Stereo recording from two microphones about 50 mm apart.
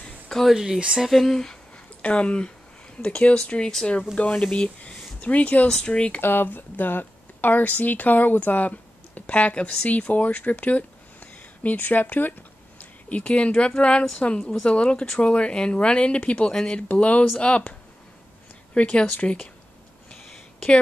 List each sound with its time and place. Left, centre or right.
0.5 s speech: centre
1.0 s speech: centre
2.0 s speech: left
5.7 s speech: centre
6.2 s speech: left
14.4 s speech: centre
14.7 s speech: left
18.8 s speech: left